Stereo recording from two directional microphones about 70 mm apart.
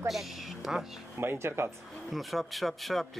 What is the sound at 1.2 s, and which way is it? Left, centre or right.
Speech, right.